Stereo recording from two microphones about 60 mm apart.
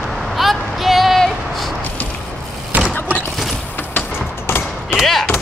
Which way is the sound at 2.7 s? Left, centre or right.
Right.